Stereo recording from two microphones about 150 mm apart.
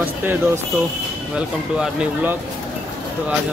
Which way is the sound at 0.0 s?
15° right (ahead or behind).